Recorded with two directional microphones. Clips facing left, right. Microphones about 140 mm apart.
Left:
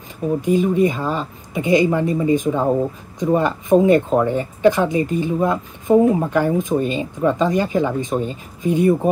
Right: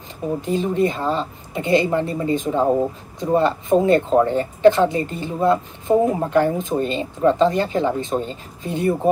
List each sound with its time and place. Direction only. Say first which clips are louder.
0.4 s speech: left 4 dB; 15° left (ahead or behind)